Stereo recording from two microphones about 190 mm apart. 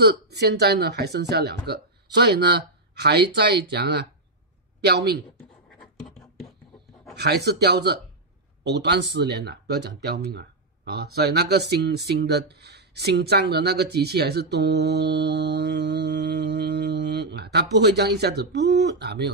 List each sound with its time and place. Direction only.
0.0 s speech: 60° right (ahead or behind)
7.2 s speech: 60° right (ahead or behind)